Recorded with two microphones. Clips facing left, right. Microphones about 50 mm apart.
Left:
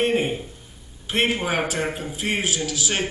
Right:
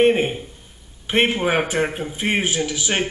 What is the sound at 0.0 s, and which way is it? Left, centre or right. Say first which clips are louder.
A man's voice: right 5 dB; right.